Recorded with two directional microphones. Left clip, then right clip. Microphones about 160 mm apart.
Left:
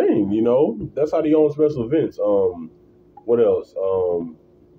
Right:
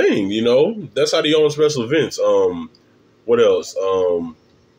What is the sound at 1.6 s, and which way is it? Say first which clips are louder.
Speech: right 2 dB; 25° right (ahead or behind).